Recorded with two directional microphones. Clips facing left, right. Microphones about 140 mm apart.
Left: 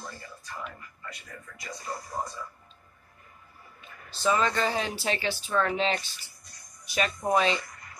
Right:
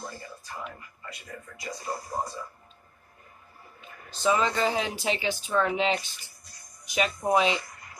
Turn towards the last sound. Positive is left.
turn(degrees=-15)  # may be behind; listen again after turning